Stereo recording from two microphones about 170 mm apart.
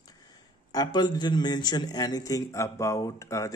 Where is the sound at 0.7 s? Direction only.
25° left (ahead or behind).